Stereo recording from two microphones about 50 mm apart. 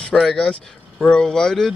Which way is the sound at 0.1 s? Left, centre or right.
Centre.